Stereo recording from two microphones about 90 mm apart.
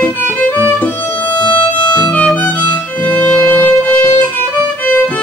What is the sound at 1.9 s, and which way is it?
Violin, 15° left (ahead or behind).